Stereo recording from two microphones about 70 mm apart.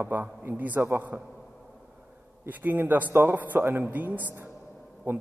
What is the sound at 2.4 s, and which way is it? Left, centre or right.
A man's voice, right.